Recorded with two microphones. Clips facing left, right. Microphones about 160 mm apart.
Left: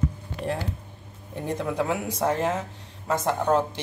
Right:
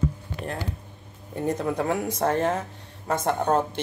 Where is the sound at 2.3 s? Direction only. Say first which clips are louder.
Right 1 dB; 55° right (ahead or behind).